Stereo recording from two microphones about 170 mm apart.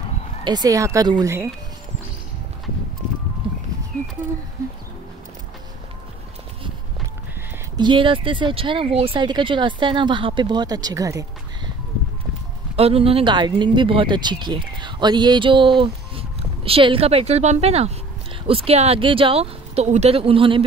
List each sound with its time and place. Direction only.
0.4 s speech: 25° right (ahead or behind)
7.7 s speech: 30° right (ahead or behind)
12.7 s speech: 35° right (ahead or behind)